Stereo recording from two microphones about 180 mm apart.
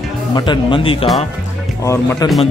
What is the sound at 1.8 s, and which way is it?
Speech, 15° left (ahead or behind).